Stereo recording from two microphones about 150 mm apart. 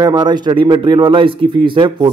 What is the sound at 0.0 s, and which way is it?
A man's voice, 30° right (ahead or behind).